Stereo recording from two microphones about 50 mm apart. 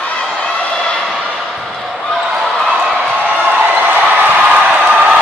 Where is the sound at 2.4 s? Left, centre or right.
Centre.